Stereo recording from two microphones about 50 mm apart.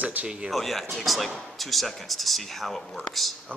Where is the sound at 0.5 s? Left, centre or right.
Centre.